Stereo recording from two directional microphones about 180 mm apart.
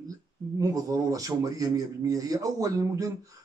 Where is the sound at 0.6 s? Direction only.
20° right (ahead or behind).